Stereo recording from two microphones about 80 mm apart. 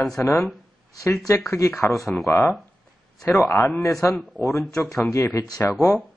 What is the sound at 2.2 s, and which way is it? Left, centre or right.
Speech, left.